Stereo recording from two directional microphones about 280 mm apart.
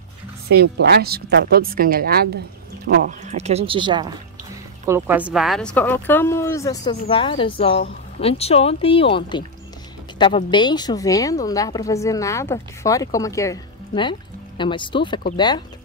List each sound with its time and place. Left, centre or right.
0.5 s a woman's voice: right; by 15.6 s centre